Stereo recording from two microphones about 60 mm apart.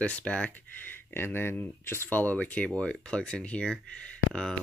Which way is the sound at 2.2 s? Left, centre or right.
Left.